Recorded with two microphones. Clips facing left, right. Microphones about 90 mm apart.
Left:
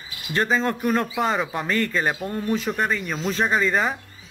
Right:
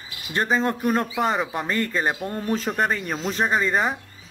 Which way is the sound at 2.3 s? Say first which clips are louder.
Left 1 dB; 35° right (ahead or behind).